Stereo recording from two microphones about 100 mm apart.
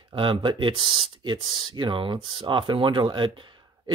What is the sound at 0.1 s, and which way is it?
Speech, 55° right (ahead or behind).